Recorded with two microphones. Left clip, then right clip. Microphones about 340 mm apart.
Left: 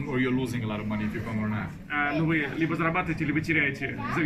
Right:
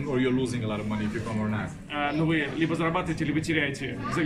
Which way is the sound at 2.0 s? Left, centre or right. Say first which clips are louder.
Even; centre.